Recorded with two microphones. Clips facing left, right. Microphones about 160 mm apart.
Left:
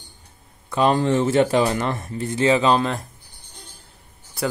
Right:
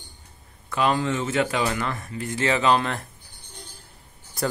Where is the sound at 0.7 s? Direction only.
35° left (ahead or behind).